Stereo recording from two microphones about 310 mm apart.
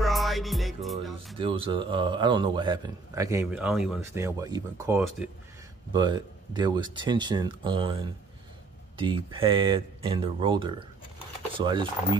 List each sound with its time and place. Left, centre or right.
0.0 s music: centre
1.4 s a man's voice: centre